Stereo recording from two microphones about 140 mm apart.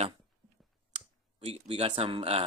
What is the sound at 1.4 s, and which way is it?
Speech, 45° right (ahead or behind).